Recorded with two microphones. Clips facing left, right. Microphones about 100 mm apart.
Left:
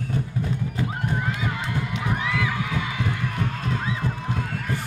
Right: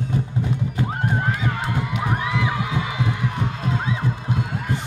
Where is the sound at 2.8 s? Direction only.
25° right (ahead or behind).